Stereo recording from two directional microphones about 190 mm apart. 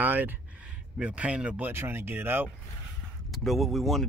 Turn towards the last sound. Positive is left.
turn(degrees=0)  # may be behind; listen again after turning